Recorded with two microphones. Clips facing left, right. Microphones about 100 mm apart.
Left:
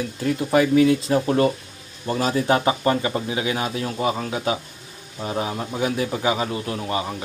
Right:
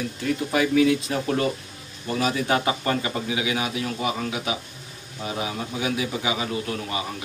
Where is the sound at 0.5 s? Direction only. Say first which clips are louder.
Left 4 dB; 30° left (ahead or behind).